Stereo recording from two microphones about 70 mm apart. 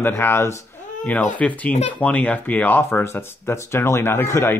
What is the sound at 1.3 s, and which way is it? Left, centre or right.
Speech, left.